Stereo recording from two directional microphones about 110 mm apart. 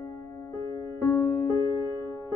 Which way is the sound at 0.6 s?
35° left (ahead or behind).